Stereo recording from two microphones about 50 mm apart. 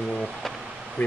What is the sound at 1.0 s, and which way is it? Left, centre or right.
Speech, left.